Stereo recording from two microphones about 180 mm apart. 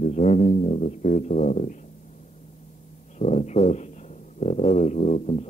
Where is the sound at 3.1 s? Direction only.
40° left (ahead or behind).